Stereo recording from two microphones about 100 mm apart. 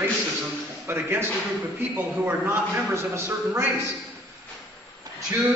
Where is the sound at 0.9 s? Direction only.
25° right (ahead or behind).